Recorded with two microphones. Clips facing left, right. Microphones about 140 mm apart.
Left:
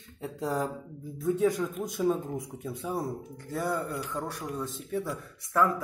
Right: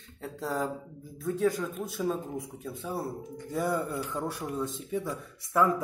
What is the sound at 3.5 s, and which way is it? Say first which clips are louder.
Speech: right 1 dB; centre (ahead or behind).